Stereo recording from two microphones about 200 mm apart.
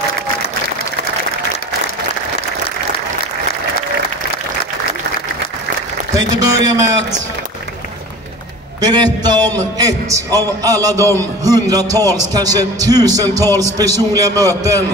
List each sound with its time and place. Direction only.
6.1 s a man's voice: 20° right (ahead or behind)
8.8 s a man's voice: 20° right (ahead or behind)